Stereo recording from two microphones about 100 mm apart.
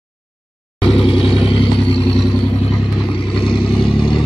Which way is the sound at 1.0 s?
60° left (ahead or behind).